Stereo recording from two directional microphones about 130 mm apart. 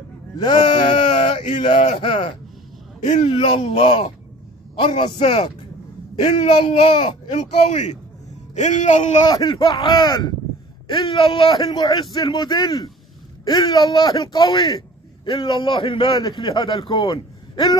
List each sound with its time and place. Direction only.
0.4 s a man's voice: 40° left (ahead or behind)
3.0 s speech: 60° left (ahead or behind)
3.3 s a man's voice: 45° left (ahead or behind)
7.3 s speech: 65° left (ahead or behind)
9.2 s a man's voice: 35° left (ahead or behind)